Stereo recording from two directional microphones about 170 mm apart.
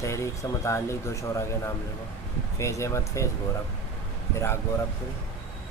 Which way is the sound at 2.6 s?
15° left (ahead or behind).